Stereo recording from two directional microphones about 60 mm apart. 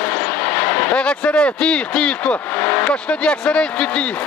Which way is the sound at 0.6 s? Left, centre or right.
Left.